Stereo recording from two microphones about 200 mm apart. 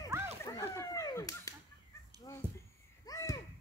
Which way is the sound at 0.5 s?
15° left (ahead or behind).